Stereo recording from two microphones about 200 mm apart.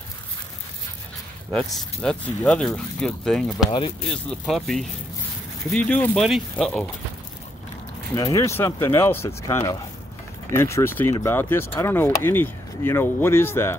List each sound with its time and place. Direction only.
1.5 s speech: 5° left (ahead or behind)
8.2 s speech: 15° left (ahead or behind)